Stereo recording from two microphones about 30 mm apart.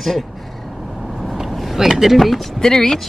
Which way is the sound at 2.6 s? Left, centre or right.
Centre.